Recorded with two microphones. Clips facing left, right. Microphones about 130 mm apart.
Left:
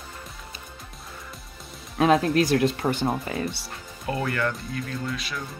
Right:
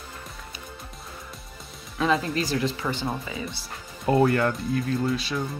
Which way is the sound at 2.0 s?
60° left (ahead or behind).